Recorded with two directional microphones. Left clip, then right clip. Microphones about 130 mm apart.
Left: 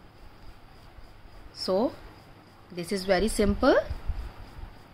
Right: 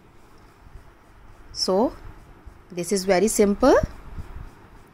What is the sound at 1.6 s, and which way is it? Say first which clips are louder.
Speech: right 5 dB; 35° right (ahead or behind).